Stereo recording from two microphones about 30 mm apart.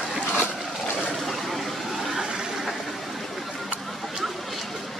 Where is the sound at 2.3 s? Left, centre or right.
Centre.